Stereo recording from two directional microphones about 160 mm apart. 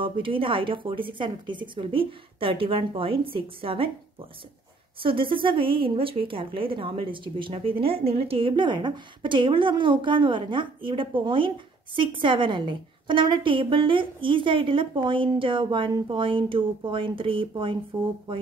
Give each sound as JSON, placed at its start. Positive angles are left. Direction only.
{"t": 0.0, "sound": "a woman's voice", "side_deg": -35}
{"t": 5.0, "sound": "a woman's voice", "side_deg": -30}